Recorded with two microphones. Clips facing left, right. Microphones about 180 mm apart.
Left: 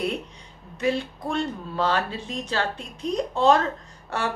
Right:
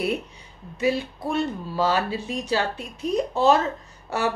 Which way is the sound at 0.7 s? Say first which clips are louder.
Right 1 dB; 5° right (ahead or behind).